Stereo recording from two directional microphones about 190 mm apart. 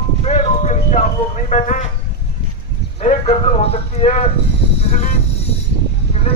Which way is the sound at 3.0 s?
35° left (ahead or behind).